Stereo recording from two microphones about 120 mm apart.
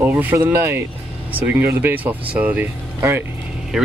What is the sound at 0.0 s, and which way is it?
Speech, 15° right (ahead or behind).